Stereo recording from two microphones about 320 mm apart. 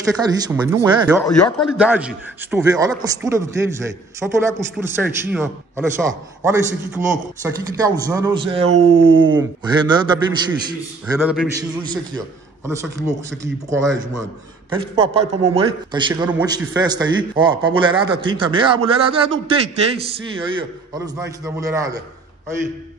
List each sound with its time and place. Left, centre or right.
0.2 s speech: centre
14.8 s speech: centre